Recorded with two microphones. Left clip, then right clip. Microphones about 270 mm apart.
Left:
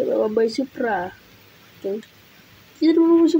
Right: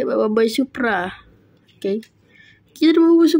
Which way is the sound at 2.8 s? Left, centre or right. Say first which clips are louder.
Right 2 dB; right.